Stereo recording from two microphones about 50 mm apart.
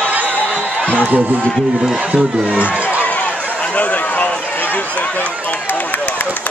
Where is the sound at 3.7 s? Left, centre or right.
Left.